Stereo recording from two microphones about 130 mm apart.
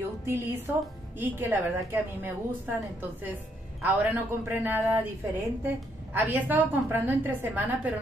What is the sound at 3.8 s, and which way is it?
A woman's voice, 15° right (ahead or behind).